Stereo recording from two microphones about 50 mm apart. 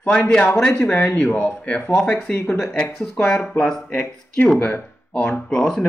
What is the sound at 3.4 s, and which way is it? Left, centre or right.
Speech, left.